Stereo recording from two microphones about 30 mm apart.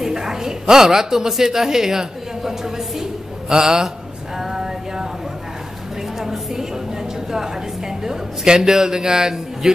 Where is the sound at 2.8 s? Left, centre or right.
Centre.